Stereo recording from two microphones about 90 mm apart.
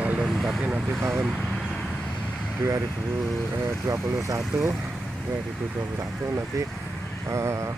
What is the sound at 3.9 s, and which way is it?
Speech, 35° right (ahead or behind).